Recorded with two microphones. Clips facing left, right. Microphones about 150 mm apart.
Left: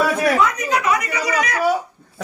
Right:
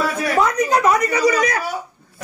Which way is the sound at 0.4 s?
30° right (ahead or behind).